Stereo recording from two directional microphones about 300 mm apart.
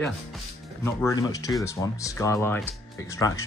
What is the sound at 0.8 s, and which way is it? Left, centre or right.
Speech, centre.